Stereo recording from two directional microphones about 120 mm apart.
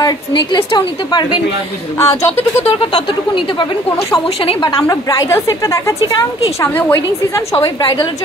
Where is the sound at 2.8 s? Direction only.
50° left (ahead or behind).